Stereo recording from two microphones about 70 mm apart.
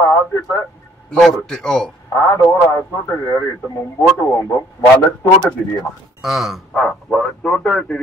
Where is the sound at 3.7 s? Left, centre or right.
Left.